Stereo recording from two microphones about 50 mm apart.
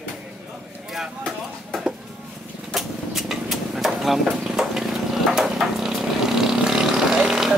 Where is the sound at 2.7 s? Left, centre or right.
Centre.